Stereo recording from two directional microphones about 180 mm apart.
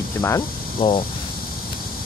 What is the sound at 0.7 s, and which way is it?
Speech, 30° left (ahead or behind).